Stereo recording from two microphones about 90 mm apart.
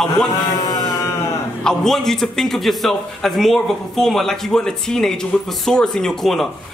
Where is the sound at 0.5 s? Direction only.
45° left (ahead or behind).